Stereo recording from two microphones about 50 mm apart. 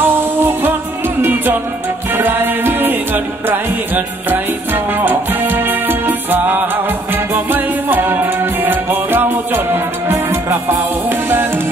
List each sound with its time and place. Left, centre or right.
0.0 s music: right